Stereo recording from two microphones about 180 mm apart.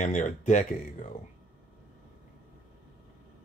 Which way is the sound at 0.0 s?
45° left (ahead or behind).